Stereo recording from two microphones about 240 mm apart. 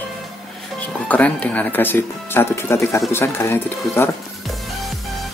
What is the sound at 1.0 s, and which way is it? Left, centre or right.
Speech, centre.